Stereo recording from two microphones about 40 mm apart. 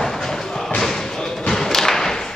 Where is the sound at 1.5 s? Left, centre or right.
Centre.